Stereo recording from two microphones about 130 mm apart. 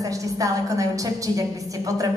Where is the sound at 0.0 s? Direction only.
25° right (ahead or behind).